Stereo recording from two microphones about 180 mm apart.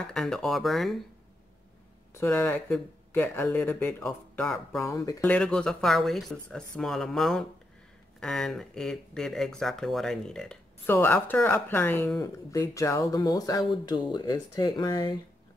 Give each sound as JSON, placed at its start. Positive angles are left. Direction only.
{"t": 0.0, "sound": "speech", "side_deg": 5}
{"t": 2.1, "sound": "speech", "side_deg": 10}
{"t": 4.8, "sound": "speech", "side_deg": 20}
{"t": 5.2, "sound": "speech", "side_deg": 5}